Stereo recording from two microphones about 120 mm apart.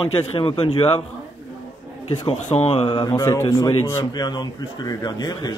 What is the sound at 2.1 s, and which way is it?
Speech, 40° left (ahead or behind).